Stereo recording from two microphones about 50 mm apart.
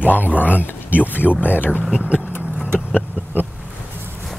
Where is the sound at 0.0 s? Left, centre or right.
Left.